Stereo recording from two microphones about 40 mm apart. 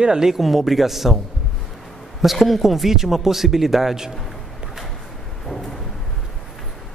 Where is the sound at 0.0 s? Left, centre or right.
Centre.